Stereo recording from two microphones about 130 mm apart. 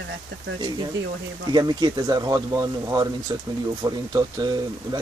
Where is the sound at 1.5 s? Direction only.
30° right (ahead or behind).